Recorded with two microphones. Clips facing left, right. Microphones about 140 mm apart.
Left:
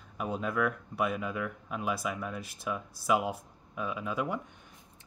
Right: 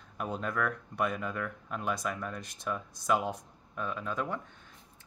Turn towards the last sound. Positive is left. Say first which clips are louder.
# left 2 dB
turn(degrees=10)  # may be behind; listen again after turning